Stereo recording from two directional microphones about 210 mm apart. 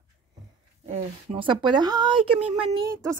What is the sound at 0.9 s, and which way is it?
Speech, 25° right (ahead or behind).